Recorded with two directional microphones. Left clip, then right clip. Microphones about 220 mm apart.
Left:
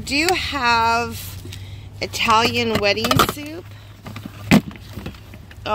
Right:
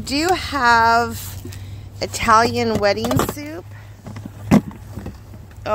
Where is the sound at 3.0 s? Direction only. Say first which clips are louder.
Left 4 dB; 10° left (ahead or behind).